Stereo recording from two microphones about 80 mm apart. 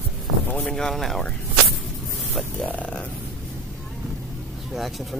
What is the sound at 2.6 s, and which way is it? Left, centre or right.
Speech, centre.